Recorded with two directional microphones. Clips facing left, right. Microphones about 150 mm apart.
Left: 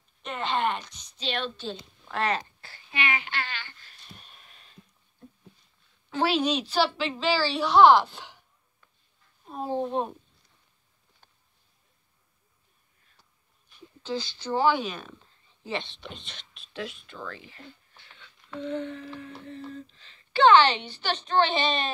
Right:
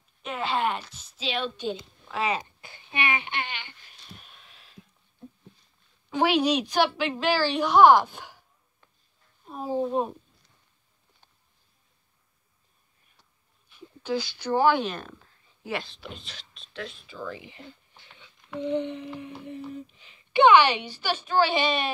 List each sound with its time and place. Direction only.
0.2 s speech: 5° right (ahead or behind)
2.7 s a sound: 20° right (ahead or behind)
4.1 s a sound: centre (ahead or behind)
6.0 s a woman's voice: 15° right (ahead or behind)
9.5 s speech: 5° right (ahead or behind)
13.7 s speech: 10° right (ahead or behind)
14.8 s speech: 10° left (ahead or behind)
15.6 s speech: 5° right (ahead or behind)
17.3 s a woman's voice: 15° right (ahead or behind)
18.1 s a sound: 15° right (ahead or behind)
19.1 s a woman's voice: 15° right (ahead or behind)